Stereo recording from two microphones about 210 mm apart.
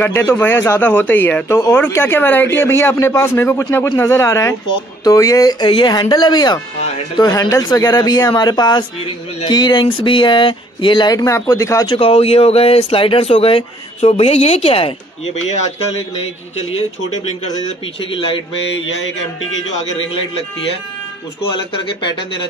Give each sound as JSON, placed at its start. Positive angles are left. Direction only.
{"t": 0.0, "sound": "speech", "side_deg": 10}
{"t": 11.9, "sound": "speech", "side_deg": 25}
{"t": 21.4, "sound": "speech", "side_deg": 25}